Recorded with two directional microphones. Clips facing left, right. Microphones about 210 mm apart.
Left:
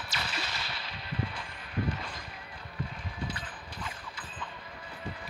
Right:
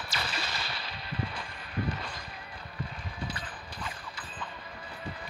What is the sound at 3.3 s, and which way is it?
Clip-clop, 35° right (ahead or behind).